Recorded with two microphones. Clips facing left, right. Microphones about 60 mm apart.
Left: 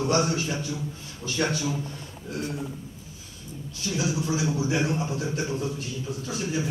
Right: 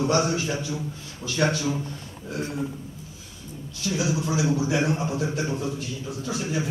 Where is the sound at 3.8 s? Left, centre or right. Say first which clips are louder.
Right 2 dB; right.